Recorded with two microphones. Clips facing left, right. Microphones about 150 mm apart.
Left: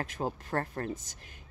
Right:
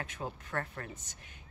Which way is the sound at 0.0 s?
40° left (ahead or behind).